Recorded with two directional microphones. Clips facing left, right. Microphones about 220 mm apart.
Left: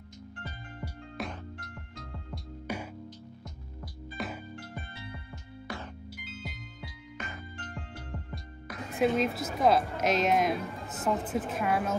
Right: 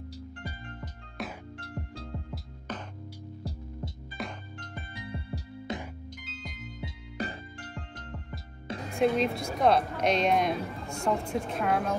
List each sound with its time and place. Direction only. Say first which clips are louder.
0.7 s music: left 4 dB; centre (ahead or behind)
1.6 s music: right 6 dB; 30° right (ahead or behind)
2.7 s music: left 2 dB; 10° left (ahead or behind)
4.2 s music: left 1 dB; 5° left (ahead or behind)
5.7 s music: right 4 dB; 20° right (ahead or behind)
6.1 s music: left 1 dB; 5° left (ahead or behind)
7.2 s music: right 8 dB; 35° right (ahead or behind)
7.9 s music: left 1 dB; 10° left (ahead or behind)
8.9 s speech: right 1 dB; 5° left (ahead or behind)